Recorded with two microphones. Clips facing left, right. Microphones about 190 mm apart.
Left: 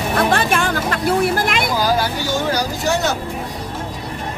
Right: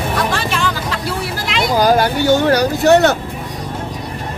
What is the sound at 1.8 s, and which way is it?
Speech, 55° right (ahead or behind).